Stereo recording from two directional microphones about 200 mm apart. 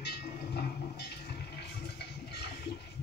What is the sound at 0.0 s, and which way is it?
Train, 55° left (ahead or behind).